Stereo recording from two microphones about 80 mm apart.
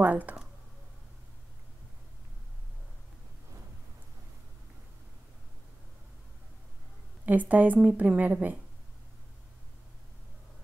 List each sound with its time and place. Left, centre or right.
0.0 s computer keyboard: centre
7.2 s a woman's voice: centre